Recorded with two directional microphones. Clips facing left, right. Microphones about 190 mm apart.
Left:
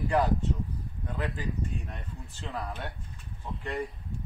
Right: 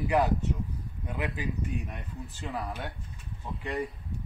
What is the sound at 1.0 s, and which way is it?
Speech, 15° right (ahead or behind).